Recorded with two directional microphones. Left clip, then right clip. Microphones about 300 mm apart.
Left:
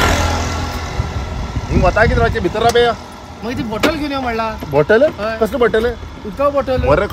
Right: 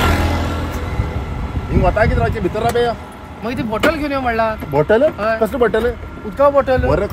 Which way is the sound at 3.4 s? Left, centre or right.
Centre.